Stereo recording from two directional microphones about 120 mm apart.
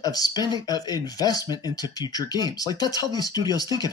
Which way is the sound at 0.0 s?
30° left (ahead or behind).